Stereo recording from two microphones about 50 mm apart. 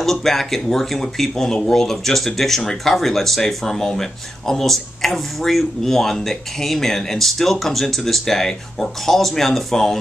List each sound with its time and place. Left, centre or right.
0.0 s speech: centre